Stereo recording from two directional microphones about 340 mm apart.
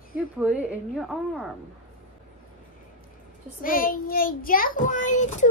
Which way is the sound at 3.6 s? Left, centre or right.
Left.